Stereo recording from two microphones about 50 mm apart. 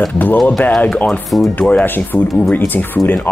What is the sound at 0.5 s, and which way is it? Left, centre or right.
Speech, left.